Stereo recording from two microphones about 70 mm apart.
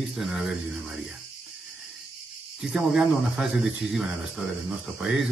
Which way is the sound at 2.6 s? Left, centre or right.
Centre.